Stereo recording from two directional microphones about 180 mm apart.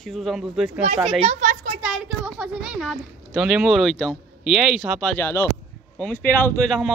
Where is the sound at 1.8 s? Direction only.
Centre (ahead or behind).